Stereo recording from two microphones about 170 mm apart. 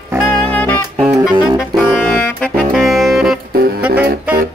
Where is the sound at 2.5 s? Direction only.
Centre (ahead or behind).